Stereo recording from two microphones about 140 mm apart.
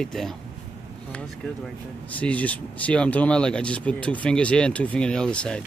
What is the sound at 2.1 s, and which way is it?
Speech, 10° left (ahead or behind).